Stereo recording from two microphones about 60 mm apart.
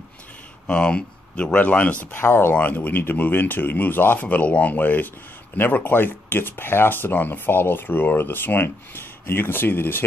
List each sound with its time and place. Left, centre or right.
0.7 s speech: centre
2.1 s speech: left
2.5 s speech: left